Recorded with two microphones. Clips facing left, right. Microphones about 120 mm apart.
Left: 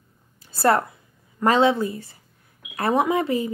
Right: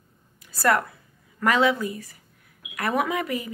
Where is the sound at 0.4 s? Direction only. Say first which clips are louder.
Left 3 dB; 30° left (ahead or behind).